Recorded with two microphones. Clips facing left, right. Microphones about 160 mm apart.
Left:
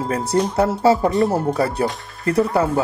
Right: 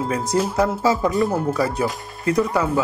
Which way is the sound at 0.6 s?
30° left (ahead or behind).